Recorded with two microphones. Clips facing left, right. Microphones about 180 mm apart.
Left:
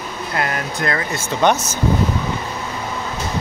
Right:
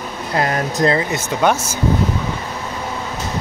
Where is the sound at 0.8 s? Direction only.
25° right (ahead or behind).